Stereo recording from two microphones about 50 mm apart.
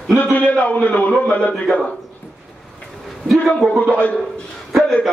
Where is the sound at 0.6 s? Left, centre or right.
Left.